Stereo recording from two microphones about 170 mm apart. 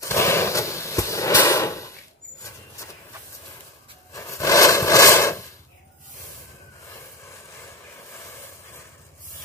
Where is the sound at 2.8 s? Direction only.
20° left (ahead or behind).